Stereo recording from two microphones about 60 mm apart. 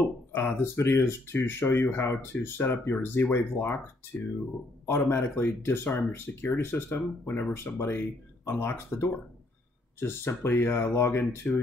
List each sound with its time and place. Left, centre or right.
0.3 s speech: left
4.8 s speech: left